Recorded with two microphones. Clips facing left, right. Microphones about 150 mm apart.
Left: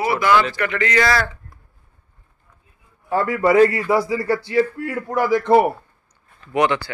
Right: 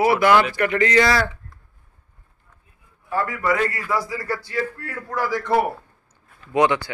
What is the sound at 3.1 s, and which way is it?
A man's voice, 25° left (ahead or behind).